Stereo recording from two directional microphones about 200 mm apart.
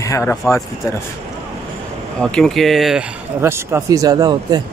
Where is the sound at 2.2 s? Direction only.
5° left (ahead or behind).